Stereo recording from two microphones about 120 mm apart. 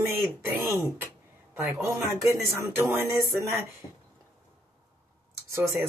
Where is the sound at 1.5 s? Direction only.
25° right (ahead or behind).